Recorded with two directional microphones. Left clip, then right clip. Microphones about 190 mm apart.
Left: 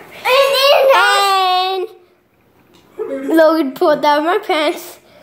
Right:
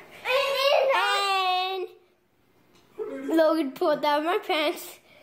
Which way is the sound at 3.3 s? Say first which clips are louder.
Left 11 dB; 5° left (ahead or behind).